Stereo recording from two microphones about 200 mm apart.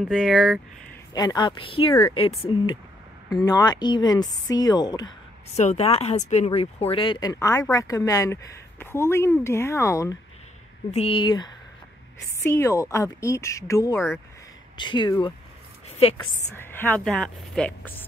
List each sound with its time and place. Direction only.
0.1 s speech: centre (ahead or behind)
1.1 s speech: 20° left (ahead or behind)
5.6 s speech: 35° left (ahead or behind); by 10.1 s 15° left (ahead or behind)
10.9 s speech: 30° left (ahead or behind)
16.5 s speech: 10° left (ahead or behind)